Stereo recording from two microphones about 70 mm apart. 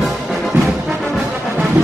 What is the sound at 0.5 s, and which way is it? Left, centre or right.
Brass instrument, right.